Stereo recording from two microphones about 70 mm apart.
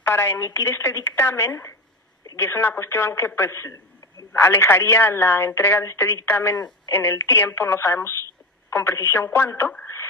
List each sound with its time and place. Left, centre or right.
0.0 s a woman's voice: left